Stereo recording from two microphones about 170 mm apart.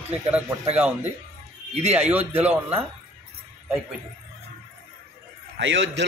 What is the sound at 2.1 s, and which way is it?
Speech, 10° right (ahead or behind).